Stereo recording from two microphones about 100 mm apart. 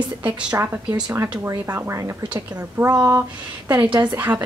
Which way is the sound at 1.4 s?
25° right (ahead or behind).